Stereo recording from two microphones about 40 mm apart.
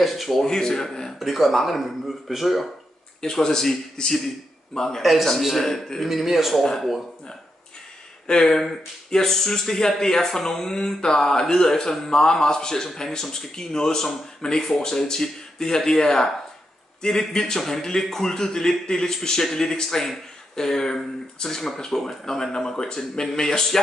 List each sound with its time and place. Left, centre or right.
0.0 s speech: centre
0.5 s speech: centre
1.2 s speech: centre
3.2 s speech: centre
6.0 s speech: centre
6.6 s speech: centre
8.4 s speech: centre